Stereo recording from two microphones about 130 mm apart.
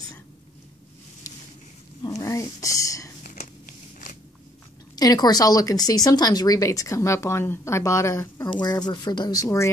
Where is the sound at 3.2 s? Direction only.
80° left.